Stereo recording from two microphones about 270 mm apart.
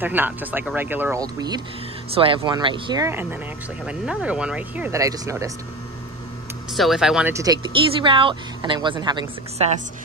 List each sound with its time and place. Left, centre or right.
0.0 s speech: centre
6.7 s speech: centre